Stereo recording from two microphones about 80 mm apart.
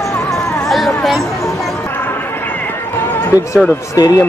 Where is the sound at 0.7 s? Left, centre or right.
Centre.